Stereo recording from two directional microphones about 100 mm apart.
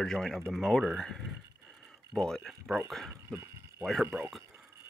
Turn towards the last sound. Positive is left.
turn(degrees=-20)  # may be behind; listen again after turning